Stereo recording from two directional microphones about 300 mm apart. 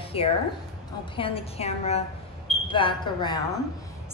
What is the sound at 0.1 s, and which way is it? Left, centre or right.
A woman's voice, centre.